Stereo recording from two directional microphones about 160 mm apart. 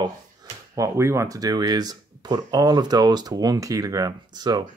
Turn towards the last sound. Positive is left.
turn(degrees=-25)  # may be behind; listen again after turning